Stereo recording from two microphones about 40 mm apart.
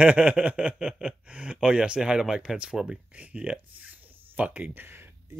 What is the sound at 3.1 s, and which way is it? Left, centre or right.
Speech, right.